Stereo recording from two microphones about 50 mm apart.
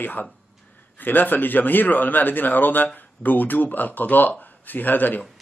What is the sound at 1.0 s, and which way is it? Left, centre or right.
Speech, left.